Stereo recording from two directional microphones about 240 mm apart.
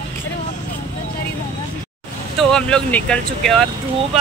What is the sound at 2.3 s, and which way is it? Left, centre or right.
Speech, centre.